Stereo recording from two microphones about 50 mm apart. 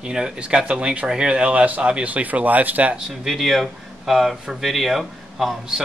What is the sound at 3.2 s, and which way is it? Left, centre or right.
Speech, centre.